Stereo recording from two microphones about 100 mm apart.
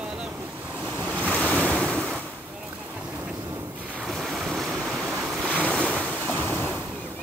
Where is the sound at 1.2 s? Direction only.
15° left (ahead or behind).